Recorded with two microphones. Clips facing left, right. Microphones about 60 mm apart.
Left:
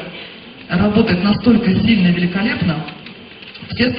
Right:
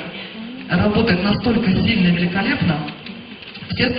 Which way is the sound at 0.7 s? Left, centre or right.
Centre.